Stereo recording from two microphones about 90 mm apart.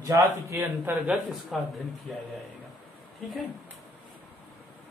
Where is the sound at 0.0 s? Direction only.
35° right (ahead or behind).